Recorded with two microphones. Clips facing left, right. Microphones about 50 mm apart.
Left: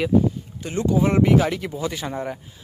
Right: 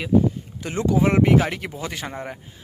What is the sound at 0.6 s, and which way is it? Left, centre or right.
Speech, right.